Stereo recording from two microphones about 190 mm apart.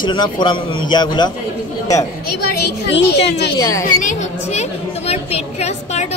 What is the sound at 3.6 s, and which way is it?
Speech, 15° left (ahead or behind).